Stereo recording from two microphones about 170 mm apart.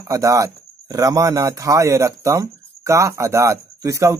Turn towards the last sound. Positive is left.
turn(degrees=-20)  # may be behind; listen again after turning